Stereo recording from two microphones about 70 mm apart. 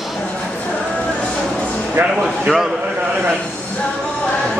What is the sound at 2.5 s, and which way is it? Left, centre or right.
Speech, centre.